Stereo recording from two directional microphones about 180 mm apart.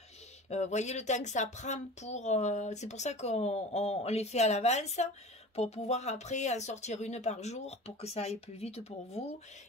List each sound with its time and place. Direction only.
0.5 s speech: 40° left (ahead or behind)